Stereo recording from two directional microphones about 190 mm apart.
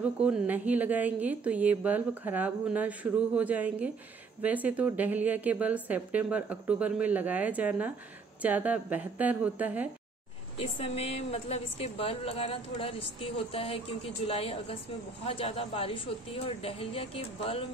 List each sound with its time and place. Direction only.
0.0 s speech: 5° right (ahead or behind)
10.6 s speech: 30° left (ahead or behind)